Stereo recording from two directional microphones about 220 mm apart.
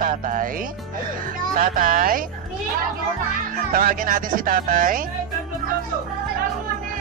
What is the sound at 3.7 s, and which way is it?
Speech, 40° right (ahead or behind).